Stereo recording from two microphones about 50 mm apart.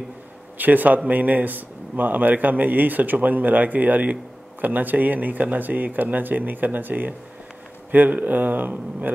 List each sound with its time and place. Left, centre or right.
0.6 s a man's voice: right